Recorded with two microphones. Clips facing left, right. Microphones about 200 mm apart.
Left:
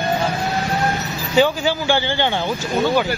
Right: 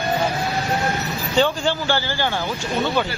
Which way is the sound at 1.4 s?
10° left (ahead or behind).